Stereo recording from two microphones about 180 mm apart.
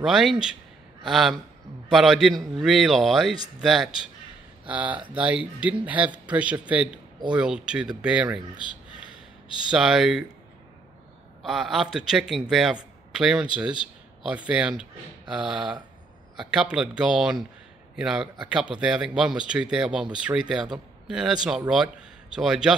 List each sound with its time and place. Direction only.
0.0 s speech: centre (ahead or behind)
8.5 s a sound: 25° left (ahead or behind)
9.7 s speech: 5° right (ahead or behind)
11.4 s speech: centre (ahead or behind)